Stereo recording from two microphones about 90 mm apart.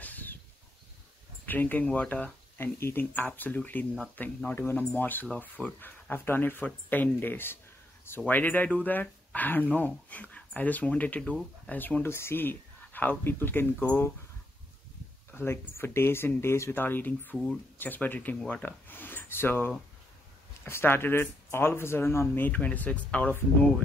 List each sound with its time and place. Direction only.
0.0 s a sound: 20° left (ahead or behind)
1.5 s speech: 20° left (ahead or behind)
15.3 s speech: 25° left (ahead or behind)